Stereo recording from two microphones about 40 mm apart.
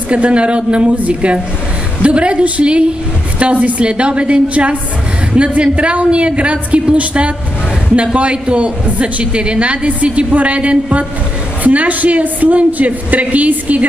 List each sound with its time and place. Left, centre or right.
0.1 s a woman's voice: right